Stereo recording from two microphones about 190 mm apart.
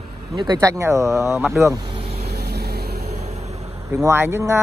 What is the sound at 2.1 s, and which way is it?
Vehicle, 55° right (ahead or behind).